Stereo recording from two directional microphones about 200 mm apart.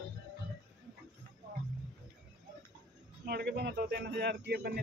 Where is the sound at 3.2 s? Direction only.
55° right (ahead or behind).